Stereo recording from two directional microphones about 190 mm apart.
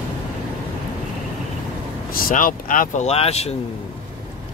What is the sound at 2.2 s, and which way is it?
Speech, 45° left (ahead or behind).